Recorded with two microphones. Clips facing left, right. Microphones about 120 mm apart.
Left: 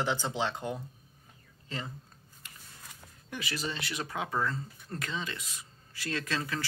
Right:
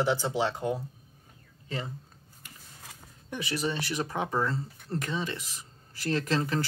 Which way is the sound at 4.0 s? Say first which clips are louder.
Right 2 dB; 25° right (ahead or behind).